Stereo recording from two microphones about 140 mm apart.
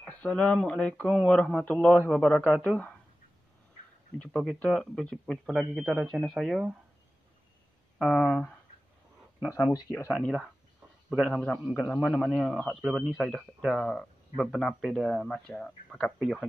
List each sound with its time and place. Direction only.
0.0 s speech: 10° left (ahead or behind)
4.2 s speech: 5° left (ahead or behind)
8.0 s speech: 5° left (ahead or behind)
9.5 s speech: 25° left (ahead or behind)
11.1 s speech: centre (ahead or behind)